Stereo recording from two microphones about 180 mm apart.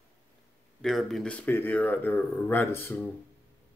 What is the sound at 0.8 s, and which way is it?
Speech, centre (ahead or behind).